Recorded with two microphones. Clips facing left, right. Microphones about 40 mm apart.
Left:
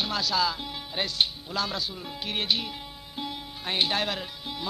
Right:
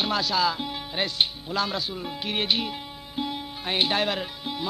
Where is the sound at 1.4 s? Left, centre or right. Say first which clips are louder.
Right 3 dB; right.